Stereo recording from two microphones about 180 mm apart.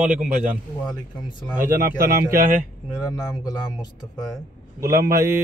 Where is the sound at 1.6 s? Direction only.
55° right (ahead or behind).